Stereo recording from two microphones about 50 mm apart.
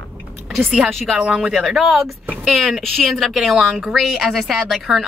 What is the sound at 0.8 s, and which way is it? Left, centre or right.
Speech, centre.